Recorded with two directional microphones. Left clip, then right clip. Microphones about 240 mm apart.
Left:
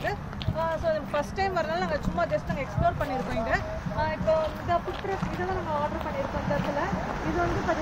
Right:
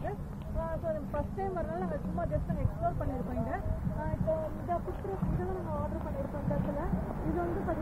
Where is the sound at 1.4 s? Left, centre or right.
Centre.